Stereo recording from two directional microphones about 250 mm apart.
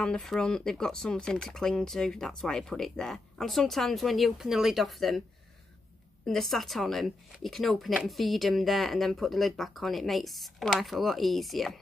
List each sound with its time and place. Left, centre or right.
0.0 s speech: centre
6.2 s speech: centre